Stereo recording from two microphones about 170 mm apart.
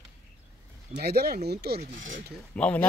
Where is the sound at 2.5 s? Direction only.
10° left (ahead or behind).